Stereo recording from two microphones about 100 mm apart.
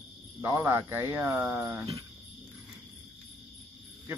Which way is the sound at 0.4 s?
25° right (ahead or behind).